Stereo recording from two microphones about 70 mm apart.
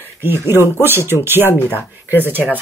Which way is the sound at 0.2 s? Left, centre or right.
Right.